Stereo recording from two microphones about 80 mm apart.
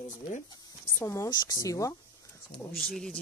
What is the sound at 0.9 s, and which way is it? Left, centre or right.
Speech, left.